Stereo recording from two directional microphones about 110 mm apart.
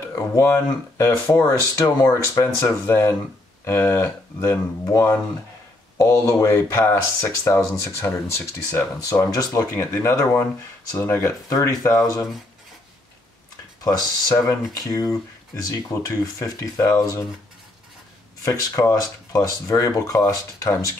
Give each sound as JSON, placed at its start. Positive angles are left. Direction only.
{"t": 0.4, "sound": "speech", "side_deg": 25}
{"t": 13.8, "sound": "speech", "side_deg": 35}
{"t": 18.4, "sound": "speech", "side_deg": 30}